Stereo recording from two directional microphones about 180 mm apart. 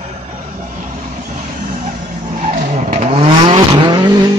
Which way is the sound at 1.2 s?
45° right (ahead or behind).